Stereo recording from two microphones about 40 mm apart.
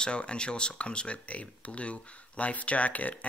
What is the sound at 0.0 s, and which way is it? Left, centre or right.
Speech, left.